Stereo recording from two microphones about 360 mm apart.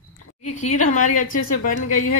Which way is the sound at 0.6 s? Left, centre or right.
Centre.